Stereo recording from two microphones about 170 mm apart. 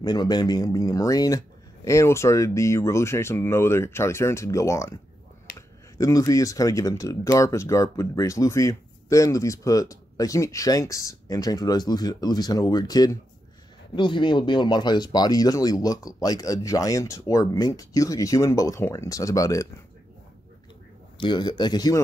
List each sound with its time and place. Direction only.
0.0 s speech: 25° left (ahead or behind)
5.9 s speech: 20° left (ahead or behind)
21.2 s speech: 25° left (ahead or behind)